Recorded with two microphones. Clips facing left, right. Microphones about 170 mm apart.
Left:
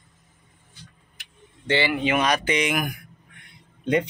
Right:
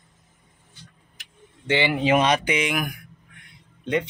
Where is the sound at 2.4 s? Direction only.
Centre (ahead or behind).